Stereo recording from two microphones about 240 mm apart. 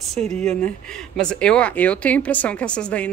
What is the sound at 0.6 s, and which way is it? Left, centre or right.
Speech, centre.